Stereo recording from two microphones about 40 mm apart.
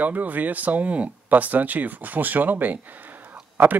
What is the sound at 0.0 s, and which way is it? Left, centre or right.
Speech, right.